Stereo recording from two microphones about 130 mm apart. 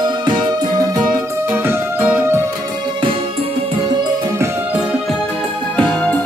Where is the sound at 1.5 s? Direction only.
15° right (ahead or behind).